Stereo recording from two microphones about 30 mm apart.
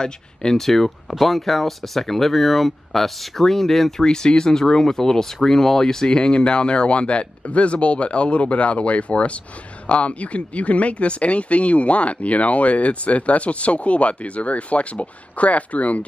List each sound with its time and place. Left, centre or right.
0.0 s speech: left
0.7 s speech: centre
4.0 s speech: left